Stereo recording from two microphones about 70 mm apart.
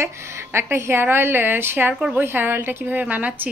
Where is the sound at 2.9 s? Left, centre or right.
Right.